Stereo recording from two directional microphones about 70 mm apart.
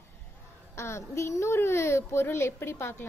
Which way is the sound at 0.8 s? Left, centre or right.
Left.